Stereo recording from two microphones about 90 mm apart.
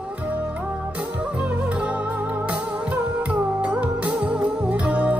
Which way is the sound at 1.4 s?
15° right (ahead or behind).